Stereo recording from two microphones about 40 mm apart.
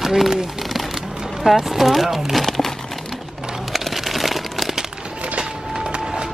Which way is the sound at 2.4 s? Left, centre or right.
Centre.